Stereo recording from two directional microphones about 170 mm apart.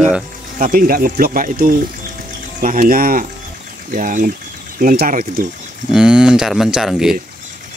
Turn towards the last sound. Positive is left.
turn(degrees=0)  # may be behind; listen again after turning